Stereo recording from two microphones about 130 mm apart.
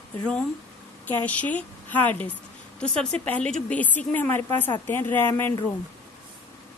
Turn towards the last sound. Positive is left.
turn(degrees=15)  # may be behind; listen again after turning